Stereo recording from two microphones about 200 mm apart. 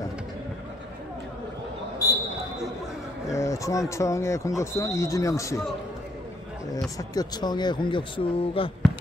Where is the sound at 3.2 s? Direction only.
15° left (ahead or behind).